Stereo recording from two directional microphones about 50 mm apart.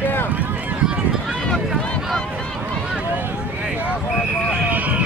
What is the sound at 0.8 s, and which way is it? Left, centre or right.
Run, right.